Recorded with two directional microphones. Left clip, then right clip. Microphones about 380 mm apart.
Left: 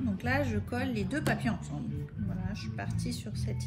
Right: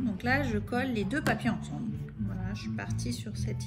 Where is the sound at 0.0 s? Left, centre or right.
Centre.